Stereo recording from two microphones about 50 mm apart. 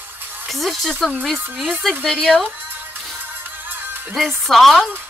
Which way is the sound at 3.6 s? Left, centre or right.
Right.